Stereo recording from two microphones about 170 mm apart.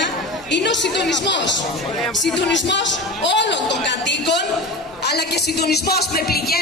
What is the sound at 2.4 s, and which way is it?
Speech, 90° left.